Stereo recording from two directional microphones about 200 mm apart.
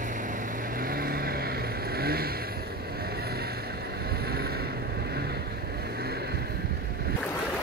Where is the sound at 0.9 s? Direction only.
50° right (ahead or behind).